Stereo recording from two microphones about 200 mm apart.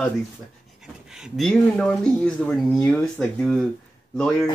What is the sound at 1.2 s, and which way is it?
Speech, centre (ahead or behind).